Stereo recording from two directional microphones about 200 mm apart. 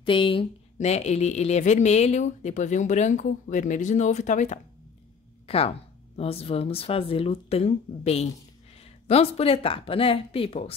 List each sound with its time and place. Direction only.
0.0 s speech: 25° left (ahead or behind)